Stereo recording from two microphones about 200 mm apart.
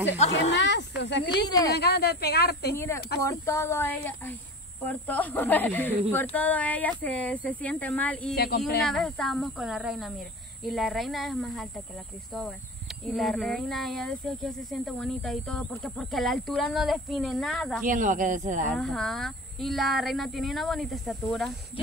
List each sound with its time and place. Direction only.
0.3 s speech: 60° left (ahead or behind)
2.7 s speech: 15° left (ahead or behind)
8.4 s speech: 50° left (ahead or behind)
8.8 s speech: centre (ahead or behind)
13.0 s speech: centre (ahead or behind)
17.8 s speech: 40° right (ahead or behind)
18.8 s speech: centre (ahead or behind)